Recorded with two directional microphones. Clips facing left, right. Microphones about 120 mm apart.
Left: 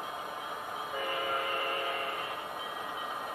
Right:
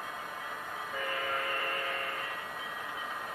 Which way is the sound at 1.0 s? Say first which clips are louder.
Left 1 dB; 20° left (ahead or behind).